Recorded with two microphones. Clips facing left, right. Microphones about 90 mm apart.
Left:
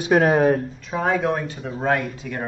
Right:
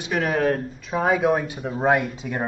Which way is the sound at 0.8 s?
5° right (ahead or behind).